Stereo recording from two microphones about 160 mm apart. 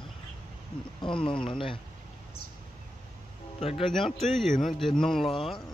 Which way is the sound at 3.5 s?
40° left (ahead or behind).